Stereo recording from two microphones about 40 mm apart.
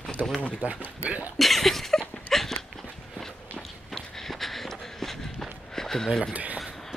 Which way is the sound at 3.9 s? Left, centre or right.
Centre.